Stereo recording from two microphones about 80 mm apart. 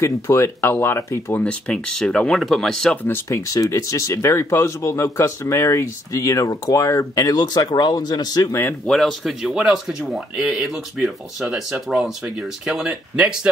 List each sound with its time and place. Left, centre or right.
0.0 s speech: left
1.4 s speech: centre
3.1 s speech: left
8.8 s speech: centre